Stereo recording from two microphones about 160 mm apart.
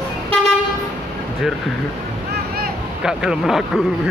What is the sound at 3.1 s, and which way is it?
Speech, 5° right (ahead or behind).